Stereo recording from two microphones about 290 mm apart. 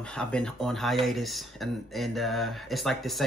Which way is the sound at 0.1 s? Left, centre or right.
Centre.